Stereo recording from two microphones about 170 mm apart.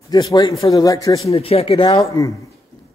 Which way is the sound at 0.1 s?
25° left (ahead or behind).